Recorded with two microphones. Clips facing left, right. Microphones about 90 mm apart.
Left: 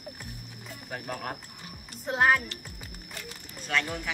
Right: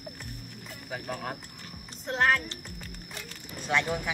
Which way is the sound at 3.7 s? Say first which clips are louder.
Right 2 dB; 15° right (ahead or behind).